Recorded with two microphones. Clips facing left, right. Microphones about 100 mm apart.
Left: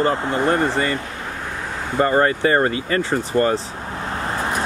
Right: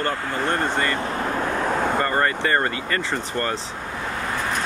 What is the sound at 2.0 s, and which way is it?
Speech, 20° left (ahead or behind).